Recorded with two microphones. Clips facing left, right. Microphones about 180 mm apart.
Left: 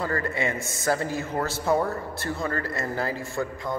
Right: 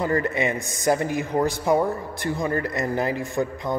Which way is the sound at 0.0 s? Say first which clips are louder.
Right 4 dB; 20° right (ahead or behind).